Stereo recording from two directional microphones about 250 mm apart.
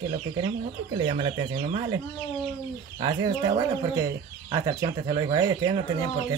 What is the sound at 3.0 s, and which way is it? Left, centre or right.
Speech, centre.